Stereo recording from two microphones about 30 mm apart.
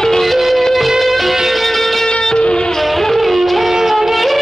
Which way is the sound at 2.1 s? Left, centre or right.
Left.